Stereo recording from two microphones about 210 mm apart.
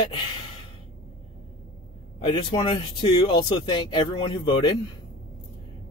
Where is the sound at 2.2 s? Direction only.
20° left (ahead or behind).